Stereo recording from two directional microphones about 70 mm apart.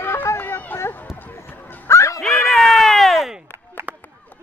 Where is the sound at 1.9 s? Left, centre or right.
Left.